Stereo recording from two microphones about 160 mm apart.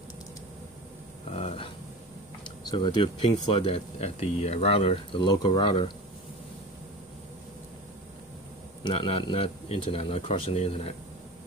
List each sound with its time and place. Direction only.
1.3 s a sound: 40° left (ahead or behind)
2.4 s speech: 30° left (ahead or behind)
8.8 s speech: 35° left (ahead or behind)